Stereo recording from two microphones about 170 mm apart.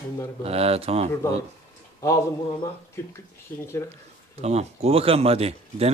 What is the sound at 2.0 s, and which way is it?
Speech, 20° left (ahead or behind).